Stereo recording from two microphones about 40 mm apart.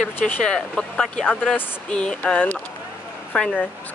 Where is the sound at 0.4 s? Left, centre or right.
Centre.